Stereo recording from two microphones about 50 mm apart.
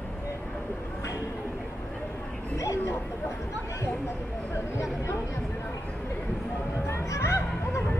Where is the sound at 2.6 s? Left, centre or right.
Left.